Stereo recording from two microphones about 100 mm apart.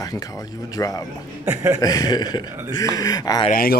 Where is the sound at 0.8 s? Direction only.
35° left (ahead or behind).